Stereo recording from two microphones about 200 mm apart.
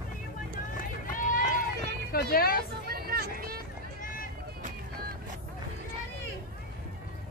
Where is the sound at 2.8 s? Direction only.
50° right (ahead or behind).